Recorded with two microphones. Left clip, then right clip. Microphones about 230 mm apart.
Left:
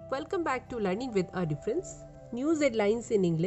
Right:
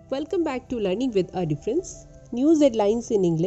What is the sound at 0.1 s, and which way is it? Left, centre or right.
A woman's voice, centre.